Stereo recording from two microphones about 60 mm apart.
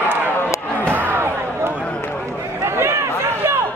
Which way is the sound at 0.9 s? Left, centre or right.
Right.